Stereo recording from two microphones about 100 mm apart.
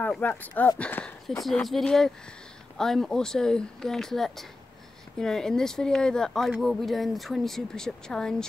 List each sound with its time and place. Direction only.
0.2 s speech: 15° left (ahead or behind)
1.4 s speech: centre (ahead or behind)